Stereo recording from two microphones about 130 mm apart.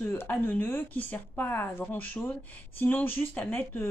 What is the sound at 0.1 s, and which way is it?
Speech, 15° left (ahead or behind).